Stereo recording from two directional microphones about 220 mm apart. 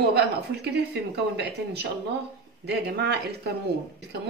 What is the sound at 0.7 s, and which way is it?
Speech, 50° right (ahead or behind).